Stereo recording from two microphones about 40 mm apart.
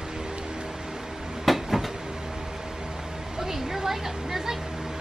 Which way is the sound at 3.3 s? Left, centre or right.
Centre.